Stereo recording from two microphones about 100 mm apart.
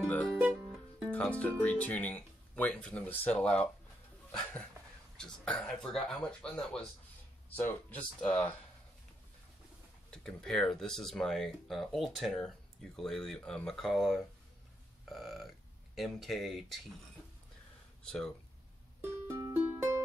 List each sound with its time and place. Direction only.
0.0 s music: 15° left (ahead or behind)
0.4 s music: 10° right (ahead or behind)
1.1 s speech: 15° left (ahead or behind)
5.1 s speech: 10° left (ahead or behind)
10.1 s speech: 5° left (ahead or behind)
18.0 s speech: 5° left (ahead or behind)
18.9 s music: 25° right (ahead or behind)